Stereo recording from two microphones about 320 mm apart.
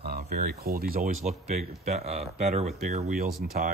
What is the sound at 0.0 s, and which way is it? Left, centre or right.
Speech, right.